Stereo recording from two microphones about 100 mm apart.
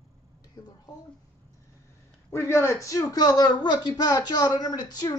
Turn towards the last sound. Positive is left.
turn(degrees=40)  # may be behind; listen again after turning